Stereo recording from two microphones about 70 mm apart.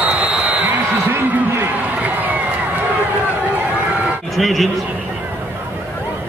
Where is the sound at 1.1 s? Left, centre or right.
Right.